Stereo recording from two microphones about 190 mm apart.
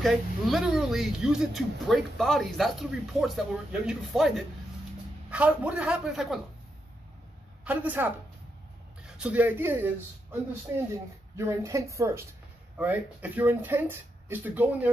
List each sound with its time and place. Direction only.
0.0 s speech: centre (ahead or behind)
5.3 s speech: 5° right (ahead or behind)
7.6 s speech: 10° right (ahead or behind)
11.3 s speech: 15° right (ahead or behind)